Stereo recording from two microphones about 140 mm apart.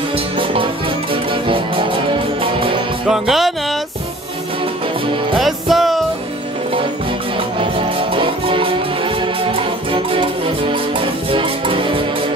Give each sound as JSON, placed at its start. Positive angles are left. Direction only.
{"t": 0.4, "sound": "music", "side_deg": -40}
{"t": 2.4, "sound": "music", "side_deg": -40}
{"t": 3.1, "sound": "music", "side_deg": 0}
{"t": 5.4, "sound": "music", "side_deg": 0}
{"t": 8.1, "sound": "music", "side_deg": -40}
{"t": 11.3, "sound": "music", "side_deg": -40}